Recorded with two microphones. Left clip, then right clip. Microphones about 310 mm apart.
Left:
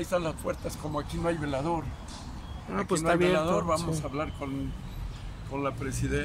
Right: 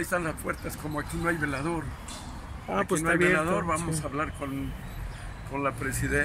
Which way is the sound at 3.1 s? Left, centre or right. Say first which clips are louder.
Even; centre.